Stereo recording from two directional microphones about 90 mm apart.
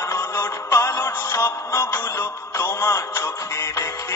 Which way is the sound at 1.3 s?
25° left (ahead or behind).